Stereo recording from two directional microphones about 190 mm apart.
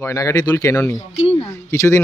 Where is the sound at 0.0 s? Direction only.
15° left (ahead or behind).